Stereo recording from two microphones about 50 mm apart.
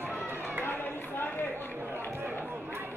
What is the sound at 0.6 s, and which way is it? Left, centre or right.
Run, left.